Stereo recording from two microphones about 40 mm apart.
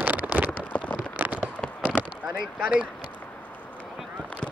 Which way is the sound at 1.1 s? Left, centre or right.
Right.